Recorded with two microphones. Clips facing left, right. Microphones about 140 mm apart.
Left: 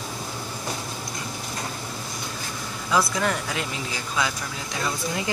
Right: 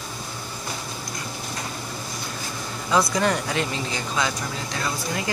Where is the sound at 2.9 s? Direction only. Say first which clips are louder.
Right 2 dB; 5° left (ahead or behind).